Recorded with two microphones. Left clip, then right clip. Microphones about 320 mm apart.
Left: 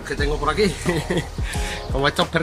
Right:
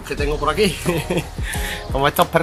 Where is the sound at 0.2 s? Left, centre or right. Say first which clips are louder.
Right 2 dB; centre.